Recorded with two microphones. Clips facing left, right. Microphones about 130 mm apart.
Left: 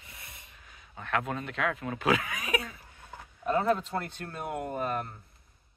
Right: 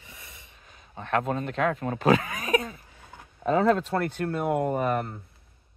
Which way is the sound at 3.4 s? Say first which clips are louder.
Right 5 dB; 90° right.